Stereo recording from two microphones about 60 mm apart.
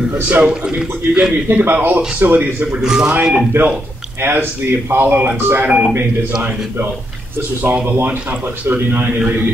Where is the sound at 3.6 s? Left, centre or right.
Right.